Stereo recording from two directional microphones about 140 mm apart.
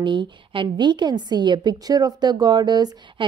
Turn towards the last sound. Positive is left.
turn(degrees=-30)  # may be behind; listen again after turning